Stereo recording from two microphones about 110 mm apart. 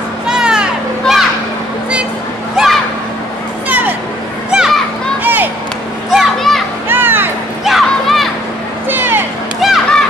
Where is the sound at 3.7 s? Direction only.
15° right (ahead or behind).